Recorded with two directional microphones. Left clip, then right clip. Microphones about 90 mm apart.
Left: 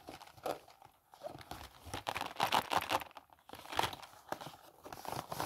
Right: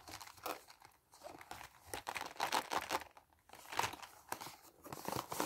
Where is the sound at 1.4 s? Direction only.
45° left (ahead or behind).